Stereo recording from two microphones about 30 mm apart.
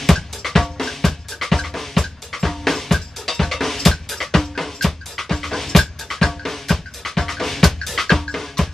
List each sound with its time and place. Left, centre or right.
0.0 s drum: centre